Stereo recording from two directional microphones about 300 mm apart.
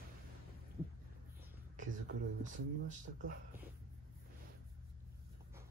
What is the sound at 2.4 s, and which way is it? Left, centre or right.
Speech, right.